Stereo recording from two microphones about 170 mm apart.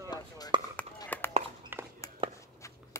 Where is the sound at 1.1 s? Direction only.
10° left (ahead or behind).